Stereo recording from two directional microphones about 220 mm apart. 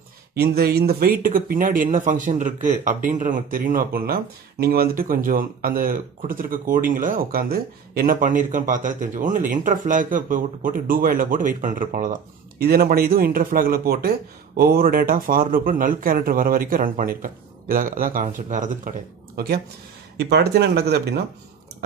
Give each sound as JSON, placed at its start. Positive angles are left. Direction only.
{"t": 0.4, "sound": "speech", "side_deg": -45}